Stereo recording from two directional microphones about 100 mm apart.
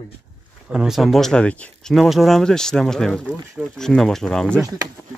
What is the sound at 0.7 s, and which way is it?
Speech, 5° right (ahead or behind).